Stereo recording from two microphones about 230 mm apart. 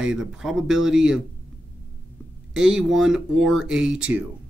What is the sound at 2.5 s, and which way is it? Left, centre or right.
Speech, centre.